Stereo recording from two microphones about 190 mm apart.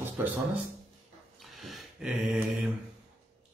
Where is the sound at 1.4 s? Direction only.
Centre (ahead or behind).